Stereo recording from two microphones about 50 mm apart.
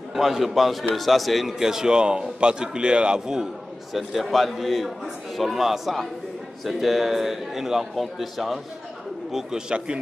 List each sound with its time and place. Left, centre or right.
0.1 s a man's voice: centre
3.9 s a man's voice: centre
9.3 s a man's voice: centre